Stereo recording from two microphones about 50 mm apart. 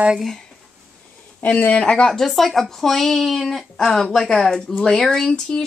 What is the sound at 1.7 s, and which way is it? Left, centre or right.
Speech, left.